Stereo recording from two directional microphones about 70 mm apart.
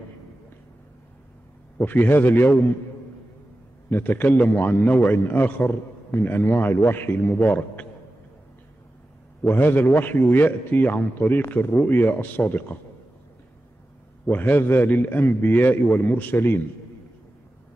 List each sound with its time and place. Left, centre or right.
1.8 s a man's voice: left
3.9 s a man's voice: left
9.4 s a man's voice: left
14.2 s a man's voice: left